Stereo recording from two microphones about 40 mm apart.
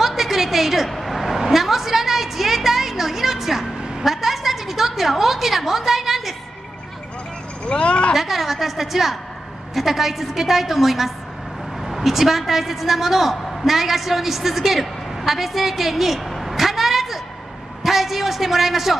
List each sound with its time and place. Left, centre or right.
0.0 s a sound: centre
4.0 s a woman's voice: centre
7.6 s speech: left
8.1 s a woman's voice: centre